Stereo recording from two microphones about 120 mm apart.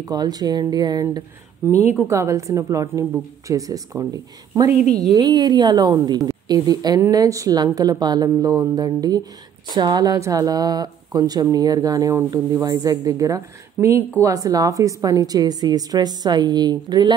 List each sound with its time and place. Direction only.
0.0 s a woman's voice: 35° right (ahead or behind)
1.7 s a woman's voice: 75° left (ahead or behind)
2.0 s a woman's voice: 25° right (ahead or behind)